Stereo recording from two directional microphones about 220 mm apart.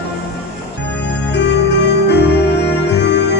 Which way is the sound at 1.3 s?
50° left (ahead or behind).